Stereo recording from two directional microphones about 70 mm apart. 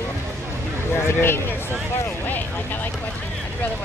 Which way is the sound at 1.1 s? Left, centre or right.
Left.